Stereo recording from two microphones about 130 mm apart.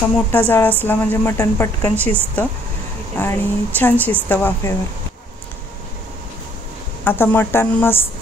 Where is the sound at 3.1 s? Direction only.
15° left (ahead or behind).